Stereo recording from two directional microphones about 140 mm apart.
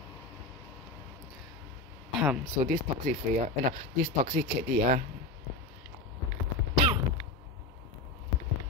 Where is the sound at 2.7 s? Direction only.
75° right (ahead or behind).